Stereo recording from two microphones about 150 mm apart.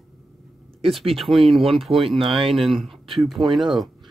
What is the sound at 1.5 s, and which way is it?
Speech, 40° right (ahead or behind).